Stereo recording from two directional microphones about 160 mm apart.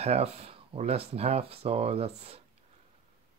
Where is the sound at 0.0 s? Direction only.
40° right (ahead or behind).